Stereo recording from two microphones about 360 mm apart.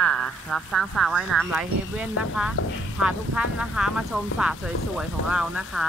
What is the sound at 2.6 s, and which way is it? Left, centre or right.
Speech, left.